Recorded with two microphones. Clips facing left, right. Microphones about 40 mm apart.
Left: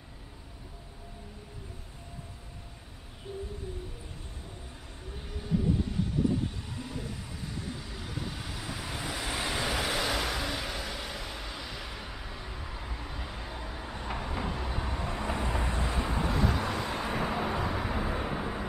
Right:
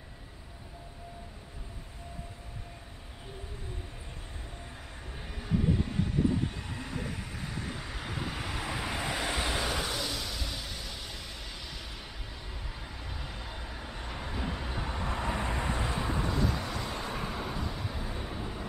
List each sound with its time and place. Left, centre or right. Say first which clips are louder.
5.4 s vehicle: even; right
9.3 s vehicle: even; centre
10.0 s vehicle: left 6 dB; left
10.4 s vehicle: left 5 dB; left; by 16.3 s centre
16.3 s vehicle: left 2 dB; centre